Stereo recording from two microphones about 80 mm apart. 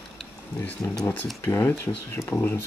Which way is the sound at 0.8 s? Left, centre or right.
Left.